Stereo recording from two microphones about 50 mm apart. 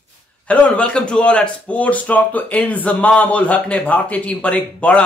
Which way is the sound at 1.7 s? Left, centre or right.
Left.